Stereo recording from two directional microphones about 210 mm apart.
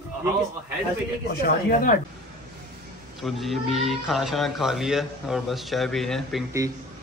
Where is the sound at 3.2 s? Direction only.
Centre (ahead or behind).